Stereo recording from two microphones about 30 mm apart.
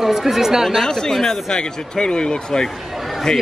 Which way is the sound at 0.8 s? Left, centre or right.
Centre.